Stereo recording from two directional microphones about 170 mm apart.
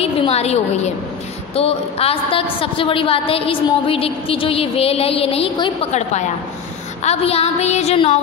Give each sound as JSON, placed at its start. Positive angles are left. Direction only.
{"t": 0.0, "sound": "a woman's voice", "side_deg": 35}